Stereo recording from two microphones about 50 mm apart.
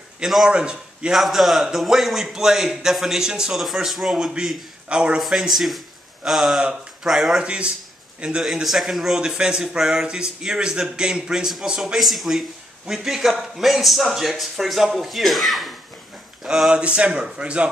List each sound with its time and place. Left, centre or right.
0.5 s a man's voice: centre
1.1 s a man's voice: centre; by 5.2 s right
5.2 s a man's voice: centre
7.4 s a man's voice: right
8.6 s a man's voice: centre
12.0 s a man's voice: centre
16.4 s speech: centre